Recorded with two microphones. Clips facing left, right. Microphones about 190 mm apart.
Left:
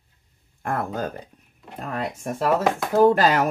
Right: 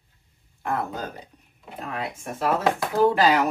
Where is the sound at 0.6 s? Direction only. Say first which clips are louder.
Left 2 dB; 50° left (ahead or behind).